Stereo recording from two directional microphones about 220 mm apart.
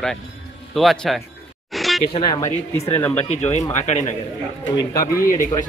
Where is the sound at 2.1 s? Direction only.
20° left (ahead or behind); by 5.5 s 40° left (ahead or behind).